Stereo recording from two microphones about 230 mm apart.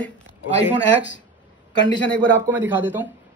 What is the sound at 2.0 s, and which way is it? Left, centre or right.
Speech, centre.